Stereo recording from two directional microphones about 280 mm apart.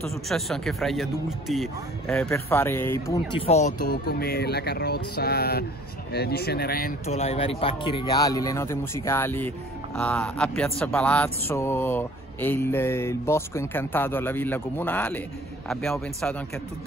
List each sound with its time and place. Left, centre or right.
0.0 s speech: centre
3.3 s speech: left; by 16.4 s centre